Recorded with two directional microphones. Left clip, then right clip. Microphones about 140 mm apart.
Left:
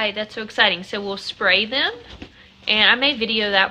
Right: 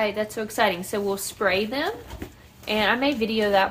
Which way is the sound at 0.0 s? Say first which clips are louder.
Left 1 dB; 10° right (ahead or behind).